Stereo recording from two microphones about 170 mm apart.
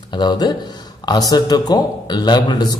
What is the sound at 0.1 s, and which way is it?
Speech, 25° left (ahead or behind).